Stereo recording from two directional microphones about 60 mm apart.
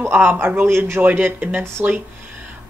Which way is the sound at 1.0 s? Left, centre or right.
Right.